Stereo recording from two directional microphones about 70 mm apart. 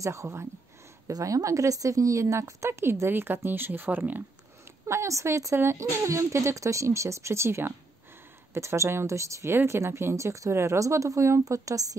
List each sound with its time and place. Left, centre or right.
0.0 s speech: right
1.1 s speech: right
4.8 s speech: right